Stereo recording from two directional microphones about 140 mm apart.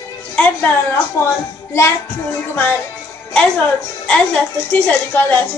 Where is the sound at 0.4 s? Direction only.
10° left (ahead or behind).